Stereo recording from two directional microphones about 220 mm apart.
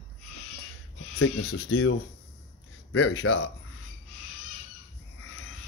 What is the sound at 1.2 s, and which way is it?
Speech, 65° left (ahead or behind).